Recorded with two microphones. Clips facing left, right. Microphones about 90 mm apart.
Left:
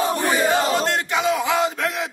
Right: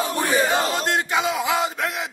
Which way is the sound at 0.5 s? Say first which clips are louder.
Left 2 dB; 15° right (ahead or behind).